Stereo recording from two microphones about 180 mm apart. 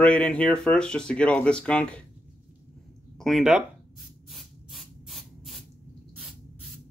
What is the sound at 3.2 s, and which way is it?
Speech, centre (ahead or behind).